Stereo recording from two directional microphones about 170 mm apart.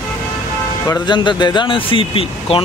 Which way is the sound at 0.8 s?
25° left (ahead or behind).